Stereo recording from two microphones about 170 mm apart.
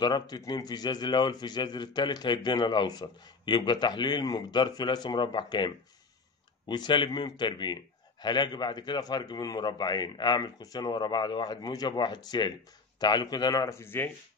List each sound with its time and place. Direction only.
0.0 s a man's voice: 25° left (ahead or behind)